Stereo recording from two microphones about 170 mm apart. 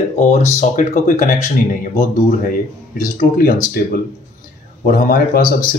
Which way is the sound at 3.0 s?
55° left (ahead or behind).